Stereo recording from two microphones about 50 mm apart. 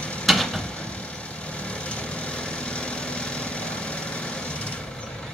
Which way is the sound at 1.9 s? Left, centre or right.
Left.